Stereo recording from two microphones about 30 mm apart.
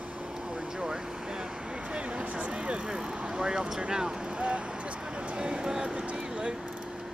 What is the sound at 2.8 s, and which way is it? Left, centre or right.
Speech, right.